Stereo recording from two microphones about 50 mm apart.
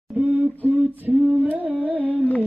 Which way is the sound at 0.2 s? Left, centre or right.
Right.